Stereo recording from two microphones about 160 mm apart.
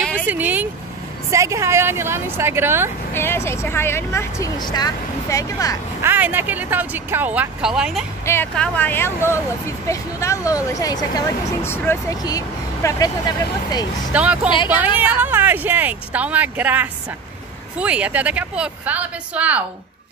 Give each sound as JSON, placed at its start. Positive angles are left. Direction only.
{"t": 0.3, "sound": "speech", "side_deg": -10}
{"t": 3.1, "sound": "speech", "side_deg": 15}
{"t": 6.0, "sound": "speech", "side_deg": -10}
{"t": 8.3, "sound": "speech", "side_deg": 10}
{"t": 14.1, "sound": "speech", "side_deg": -10}